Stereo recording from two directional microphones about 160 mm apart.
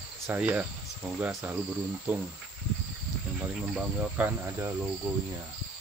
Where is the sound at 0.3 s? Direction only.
10° right (ahead or behind).